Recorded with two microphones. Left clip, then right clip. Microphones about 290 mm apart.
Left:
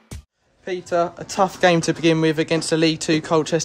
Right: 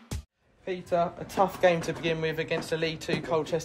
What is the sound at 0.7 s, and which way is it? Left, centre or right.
Speech, left.